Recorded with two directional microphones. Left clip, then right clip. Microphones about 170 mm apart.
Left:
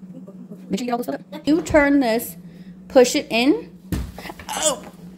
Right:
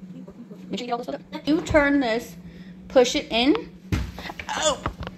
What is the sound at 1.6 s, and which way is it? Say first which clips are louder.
A woman's voice: left 3 dB; 60° left (ahead or behind).